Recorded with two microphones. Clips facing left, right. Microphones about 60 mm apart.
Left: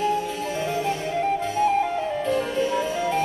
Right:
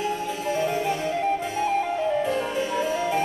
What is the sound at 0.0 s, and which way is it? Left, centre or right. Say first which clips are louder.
Music: left 4 dB; right.